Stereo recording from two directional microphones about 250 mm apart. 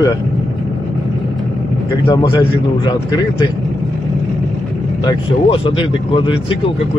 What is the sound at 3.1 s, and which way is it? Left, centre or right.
Speech, centre.